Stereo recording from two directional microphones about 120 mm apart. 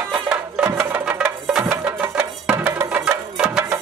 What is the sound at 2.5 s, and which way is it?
Music, 10° right (ahead or behind).